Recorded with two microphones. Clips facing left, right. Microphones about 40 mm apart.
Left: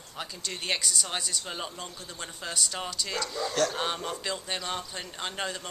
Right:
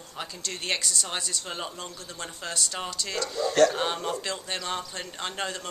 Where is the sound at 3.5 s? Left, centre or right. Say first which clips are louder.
Right 8 dB; centre.